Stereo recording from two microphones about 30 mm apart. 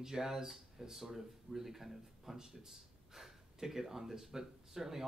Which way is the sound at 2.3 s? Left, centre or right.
Centre.